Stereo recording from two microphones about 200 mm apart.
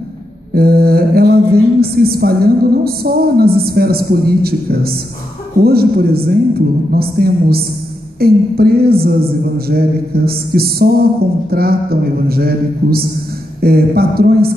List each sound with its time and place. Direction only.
0.6 s a woman's voice: 50° right (ahead or behind)